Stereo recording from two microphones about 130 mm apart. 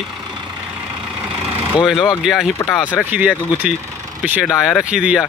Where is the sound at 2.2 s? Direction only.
Centre (ahead or behind).